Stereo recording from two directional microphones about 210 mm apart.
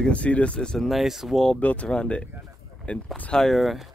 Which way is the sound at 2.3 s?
10° right (ahead or behind).